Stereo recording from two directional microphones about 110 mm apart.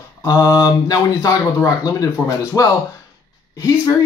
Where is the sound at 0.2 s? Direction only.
30° left (ahead or behind).